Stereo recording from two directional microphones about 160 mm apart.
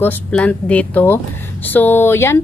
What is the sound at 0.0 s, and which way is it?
A woman's voice, 10° left (ahead or behind).